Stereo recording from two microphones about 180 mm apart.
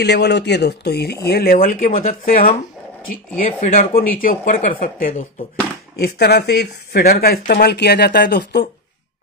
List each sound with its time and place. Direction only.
0.0 s speech: 70° left (ahead or behind); by 2.5 s 50° left (ahead or behind)
3.6 s speech: 50° left (ahead or behind)
6.0 s speech: 60° left (ahead or behind)